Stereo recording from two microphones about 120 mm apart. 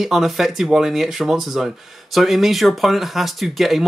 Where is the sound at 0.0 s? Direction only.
Centre (ahead or behind).